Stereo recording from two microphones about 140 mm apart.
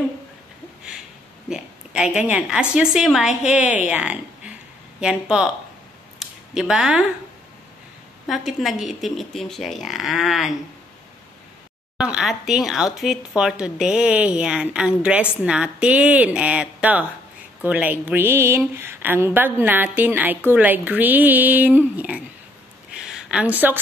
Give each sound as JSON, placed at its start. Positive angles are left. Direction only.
{"t": 2.2, "sound": "speech", "side_deg": -5}
{"t": 3.6, "sound": "speech", "side_deg": 60}
{"t": 3.9, "sound": "speech", "side_deg": -10}
{"t": 6.1, "sound": "a sound", "side_deg": -5}
{"t": 8.3, "sound": "speech", "side_deg": 0}
{"t": 12.0, "sound": "speech", "side_deg": -5}
{"t": 22.9, "sound": "a sound", "side_deg": -5}